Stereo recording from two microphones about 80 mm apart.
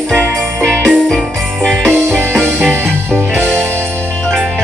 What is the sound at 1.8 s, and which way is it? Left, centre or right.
Music, right.